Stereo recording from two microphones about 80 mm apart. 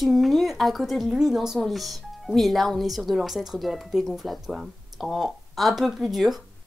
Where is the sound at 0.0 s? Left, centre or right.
Centre.